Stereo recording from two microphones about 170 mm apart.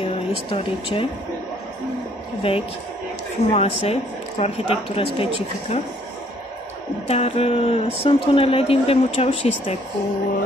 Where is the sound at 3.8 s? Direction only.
40° left (ahead or behind).